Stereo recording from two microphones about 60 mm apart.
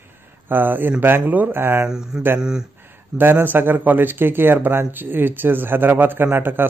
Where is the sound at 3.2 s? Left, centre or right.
Right.